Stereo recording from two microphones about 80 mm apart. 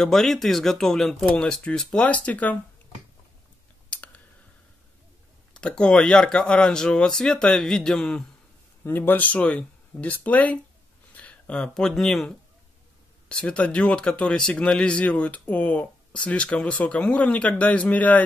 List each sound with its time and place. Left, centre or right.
0.0 s speech: centre
3.9 s clicking: centre
5.5 s speech: centre
8.8 s speech: left; by 12.3 s centre
13.3 s speech: centre